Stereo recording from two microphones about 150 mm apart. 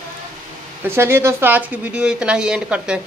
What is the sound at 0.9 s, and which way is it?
Speech, 15° right (ahead or behind).